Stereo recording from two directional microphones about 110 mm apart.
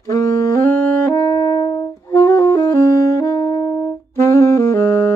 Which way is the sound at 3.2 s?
35° left (ahead or behind).